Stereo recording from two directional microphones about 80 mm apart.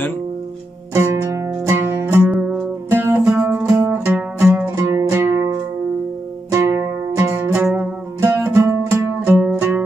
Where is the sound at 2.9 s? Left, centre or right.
Right.